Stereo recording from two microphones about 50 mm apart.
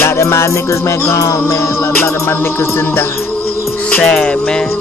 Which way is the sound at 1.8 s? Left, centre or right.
Left.